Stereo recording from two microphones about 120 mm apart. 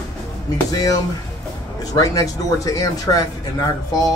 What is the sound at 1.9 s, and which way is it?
Speech, 30° left (ahead or behind).